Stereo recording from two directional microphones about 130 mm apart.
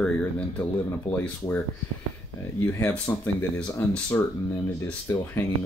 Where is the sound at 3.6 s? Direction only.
10° left (ahead or behind).